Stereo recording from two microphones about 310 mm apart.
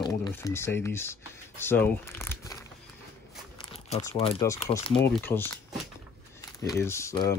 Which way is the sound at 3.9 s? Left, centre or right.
Centre.